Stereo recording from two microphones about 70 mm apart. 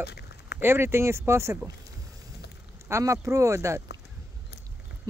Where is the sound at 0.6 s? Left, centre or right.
Right.